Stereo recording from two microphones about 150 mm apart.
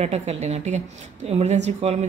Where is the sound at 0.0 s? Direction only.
45° right (ahead or behind).